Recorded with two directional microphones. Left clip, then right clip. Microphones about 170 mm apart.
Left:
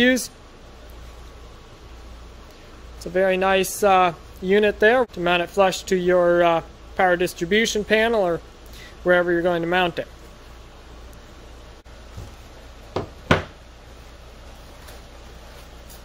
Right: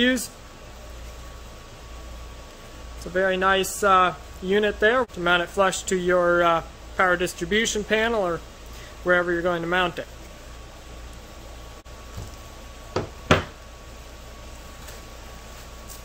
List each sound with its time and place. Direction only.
3.0 s speech: 30° left (ahead or behind)